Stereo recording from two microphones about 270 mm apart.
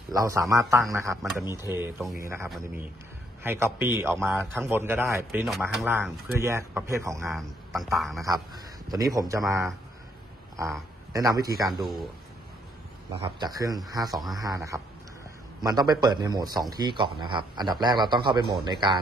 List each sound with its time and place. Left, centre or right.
0.1 s speech: centre
7.2 s speech: centre
8.9 s speech: centre
11.1 s speech: centre
11.8 s speech: centre
13.1 s speech: centre